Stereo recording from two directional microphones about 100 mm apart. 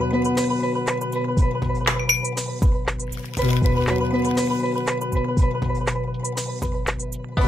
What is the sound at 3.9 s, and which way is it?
Music, 15° right (ahead or behind).